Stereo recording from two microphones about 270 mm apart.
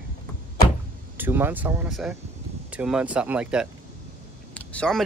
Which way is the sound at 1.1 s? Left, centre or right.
Centre.